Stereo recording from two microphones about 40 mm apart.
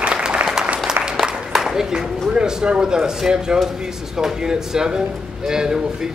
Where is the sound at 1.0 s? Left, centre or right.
Centre.